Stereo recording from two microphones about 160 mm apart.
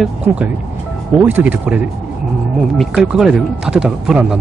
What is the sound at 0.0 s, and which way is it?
Speech, 5° right (ahead or behind).